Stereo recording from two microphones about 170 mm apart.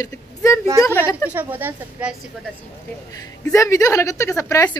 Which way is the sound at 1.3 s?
10° right (ahead or behind).